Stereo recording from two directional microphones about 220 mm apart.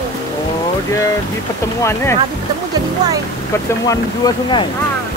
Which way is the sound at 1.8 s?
10° left (ahead or behind).